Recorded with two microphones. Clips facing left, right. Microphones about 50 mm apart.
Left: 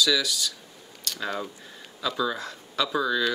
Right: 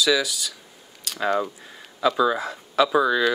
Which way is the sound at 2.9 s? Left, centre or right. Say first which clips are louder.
Right 2 dB; right.